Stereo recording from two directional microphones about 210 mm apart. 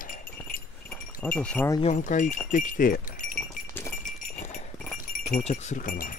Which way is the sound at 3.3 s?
5° left (ahead or behind).